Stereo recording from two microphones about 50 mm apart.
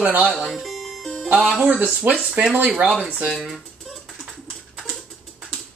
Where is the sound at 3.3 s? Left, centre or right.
Centre.